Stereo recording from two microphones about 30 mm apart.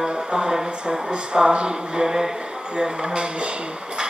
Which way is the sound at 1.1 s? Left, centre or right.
Right.